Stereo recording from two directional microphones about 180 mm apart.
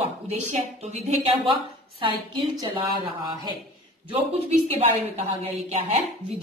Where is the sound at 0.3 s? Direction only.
40° right (ahead or behind).